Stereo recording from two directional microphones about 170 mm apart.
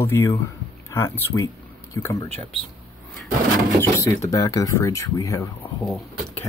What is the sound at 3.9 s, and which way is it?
Speech, 15° left (ahead or behind).